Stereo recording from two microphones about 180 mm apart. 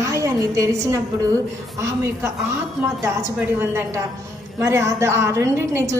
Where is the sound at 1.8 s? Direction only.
15° right (ahead or behind).